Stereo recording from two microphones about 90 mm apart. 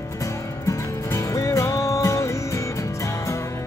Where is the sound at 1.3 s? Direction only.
35° left (ahead or behind).